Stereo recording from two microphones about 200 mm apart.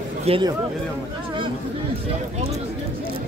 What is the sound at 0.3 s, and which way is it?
Speech, 30° right (ahead or behind).